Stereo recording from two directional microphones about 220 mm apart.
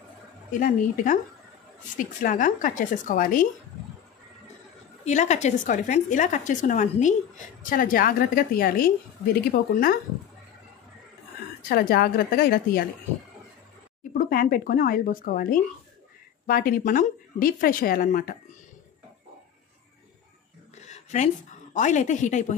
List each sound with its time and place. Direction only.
0.5 s a woman's voice: 35° left (ahead or behind)
5.0 s a woman's voice: 30° left (ahead or behind)
11.7 s a woman's voice: 45° left (ahead or behind)
14.1 s a woman's voice: 40° left (ahead or behind)
20.7 s a sound: 30° left (ahead or behind)
21.7 s a woman's voice: 35° left (ahead or behind)